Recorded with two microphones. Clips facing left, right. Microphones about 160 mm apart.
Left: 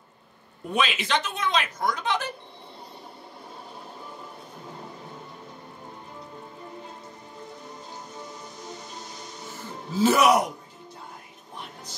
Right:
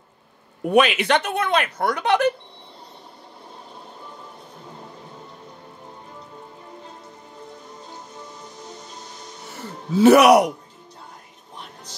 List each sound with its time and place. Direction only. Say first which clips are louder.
0.7 s speech: right 9 dB; 65° right (ahead or behind)
9.9 s speech: right 8 dB; 65° right (ahead or behind)